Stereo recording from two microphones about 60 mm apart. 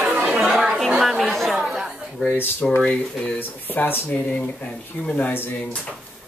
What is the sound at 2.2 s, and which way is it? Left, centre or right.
Speech, left.